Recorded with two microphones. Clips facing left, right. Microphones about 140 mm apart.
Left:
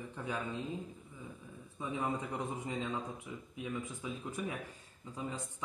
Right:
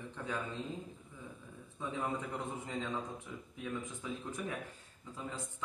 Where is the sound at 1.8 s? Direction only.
15° left (ahead or behind).